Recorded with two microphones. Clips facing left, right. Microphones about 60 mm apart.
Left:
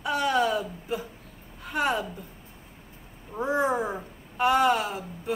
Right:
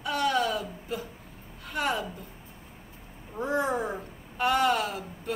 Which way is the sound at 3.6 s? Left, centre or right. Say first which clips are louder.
Left 3 dB; centre.